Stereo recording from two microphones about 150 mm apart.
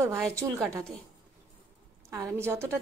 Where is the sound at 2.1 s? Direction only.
15° right (ahead or behind).